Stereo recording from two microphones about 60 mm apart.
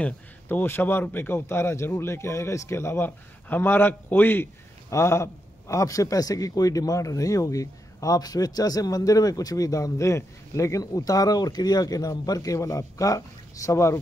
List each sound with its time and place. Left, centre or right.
0.5 s a man's voice: left
3.4 s a man's voice: left
4.9 s a man's voice: left
12.6 s a man's voice: left